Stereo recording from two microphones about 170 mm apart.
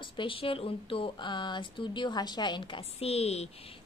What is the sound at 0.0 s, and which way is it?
A woman's voice, 30° left (ahead or behind).